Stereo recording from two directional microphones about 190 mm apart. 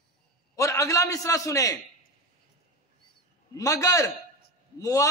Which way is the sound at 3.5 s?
15° left (ahead or behind).